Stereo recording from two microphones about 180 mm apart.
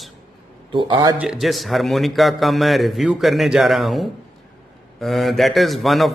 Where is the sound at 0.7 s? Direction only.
25° right (ahead or behind).